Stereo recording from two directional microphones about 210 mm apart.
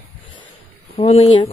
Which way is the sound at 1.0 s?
25° left (ahead or behind).